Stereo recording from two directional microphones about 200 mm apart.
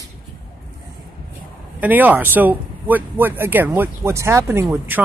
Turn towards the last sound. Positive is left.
turn(degrees=-10)  # may be behind; listen again after turning